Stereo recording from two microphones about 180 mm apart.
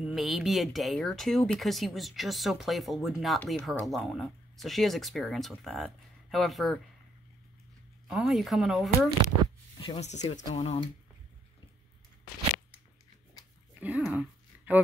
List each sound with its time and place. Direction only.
0.0 s speech: centre (ahead or behind)
8.1 s speech: centre (ahead or behind)
9.8 s speech: 35° left (ahead or behind)
13.7 s a sound: 5° right (ahead or behind)